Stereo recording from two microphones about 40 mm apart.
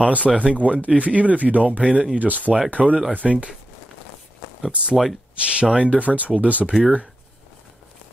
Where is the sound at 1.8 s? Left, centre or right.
Right.